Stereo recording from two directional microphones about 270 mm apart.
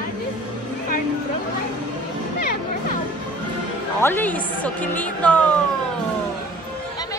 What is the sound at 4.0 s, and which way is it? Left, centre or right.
A woman's voice, centre.